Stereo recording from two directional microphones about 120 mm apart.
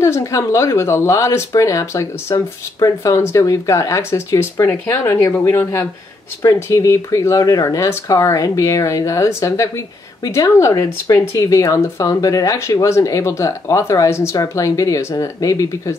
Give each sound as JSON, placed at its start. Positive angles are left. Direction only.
{"t": 0.0, "sound": "speech", "side_deg": 25}